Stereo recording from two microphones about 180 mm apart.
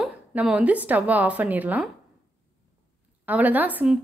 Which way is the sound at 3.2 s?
10° right (ahead or behind).